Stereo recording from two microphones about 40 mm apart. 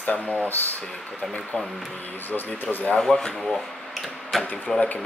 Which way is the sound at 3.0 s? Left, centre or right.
Centre.